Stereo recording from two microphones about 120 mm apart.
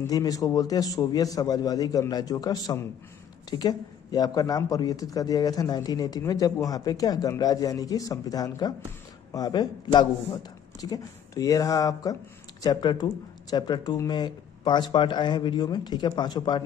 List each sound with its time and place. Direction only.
0.0 s a man's voice: 30° left (ahead or behind)